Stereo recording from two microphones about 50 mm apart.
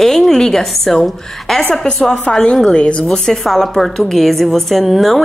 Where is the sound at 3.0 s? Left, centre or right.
Centre.